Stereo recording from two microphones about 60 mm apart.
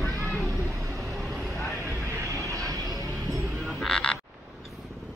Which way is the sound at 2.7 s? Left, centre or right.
Right.